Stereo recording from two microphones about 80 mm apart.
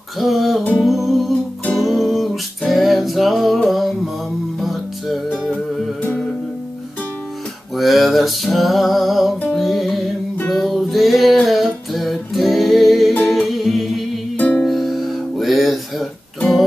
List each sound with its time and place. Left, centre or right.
0.2 s music: centre
7.7 s a sound: centre
9.6 s music: centre
13.2 s humming: centre
14.3 s music: centre
14.7 s music: centre